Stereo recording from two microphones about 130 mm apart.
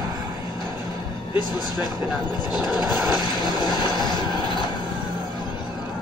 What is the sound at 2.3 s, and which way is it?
Speech, 30° left (ahead or behind).